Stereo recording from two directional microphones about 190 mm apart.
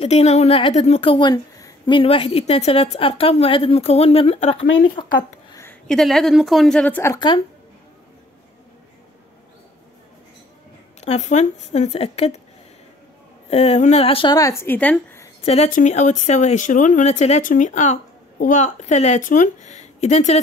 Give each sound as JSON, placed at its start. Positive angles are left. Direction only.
{"t": 0.0, "sound": "a woman's voice", "side_deg": 35}
{"t": 5.5, "sound": "a sound", "side_deg": 15}
{"t": 5.9, "sound": "a woman's voice", "side_deg": 0}
{"t": 11.0, "sound": "a woman's voice", "side_deg": 35}
{"t": 13.5, "sound": "speech", "side_deg": 35}
{"t": 15.4, "sound": "a woman's voice", "side_deg": 35}